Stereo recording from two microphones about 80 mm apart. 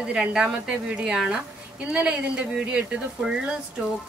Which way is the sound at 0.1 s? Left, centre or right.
Centre.